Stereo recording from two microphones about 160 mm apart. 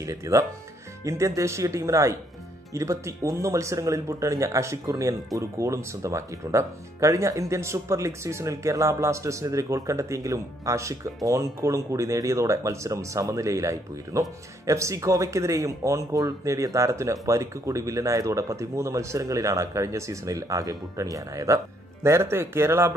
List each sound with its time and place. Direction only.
0.0 s speech: 20° right (ahead or behind)